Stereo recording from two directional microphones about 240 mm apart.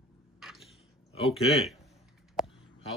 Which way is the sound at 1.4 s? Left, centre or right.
Left.